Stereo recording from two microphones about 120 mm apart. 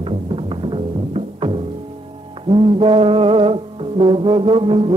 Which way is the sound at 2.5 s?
50° right (ahead or behind).